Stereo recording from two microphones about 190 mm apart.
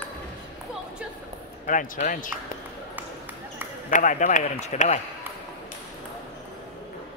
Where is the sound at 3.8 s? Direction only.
40° left (ahead or behind).